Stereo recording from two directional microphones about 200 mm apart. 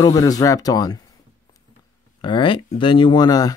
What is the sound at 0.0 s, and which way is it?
Speech, 20° left (ahead or behind).